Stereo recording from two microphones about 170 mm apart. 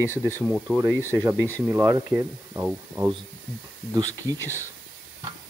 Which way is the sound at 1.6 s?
15° right (ahead or behind).